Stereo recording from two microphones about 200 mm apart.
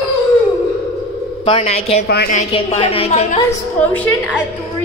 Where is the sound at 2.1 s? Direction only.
50° left (ahead or behind).